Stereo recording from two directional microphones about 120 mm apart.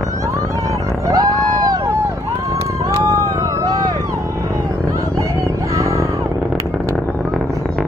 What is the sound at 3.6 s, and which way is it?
Vehicle, 30° right (ahead or behind).